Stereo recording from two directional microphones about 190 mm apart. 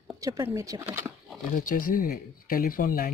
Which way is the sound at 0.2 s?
15° right (ahead or behind).